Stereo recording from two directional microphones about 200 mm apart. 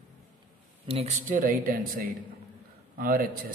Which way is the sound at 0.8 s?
30° right (ahead or behind).